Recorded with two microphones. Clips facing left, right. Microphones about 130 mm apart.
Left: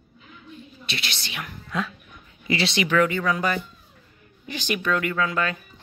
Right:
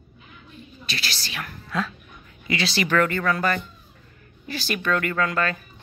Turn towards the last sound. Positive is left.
turn(degrees=10)  # may be behind; listen again after turning